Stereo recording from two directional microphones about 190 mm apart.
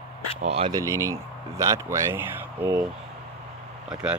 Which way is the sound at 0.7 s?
15° right (ahead or behind).